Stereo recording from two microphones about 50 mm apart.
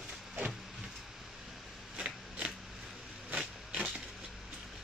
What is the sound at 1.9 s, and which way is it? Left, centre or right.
Scissors, right.